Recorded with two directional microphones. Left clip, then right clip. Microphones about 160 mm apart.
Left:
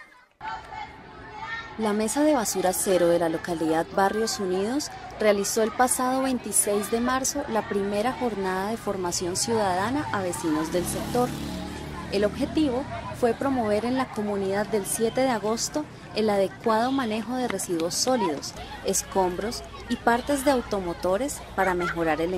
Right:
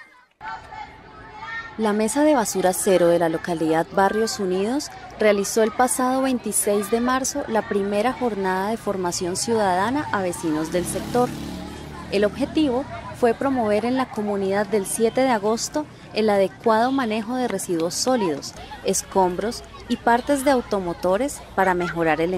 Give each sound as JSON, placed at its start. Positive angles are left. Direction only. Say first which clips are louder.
{"t": 1.8, "sound": "speech", "louder": "right 4 dB", "side_deg": -40}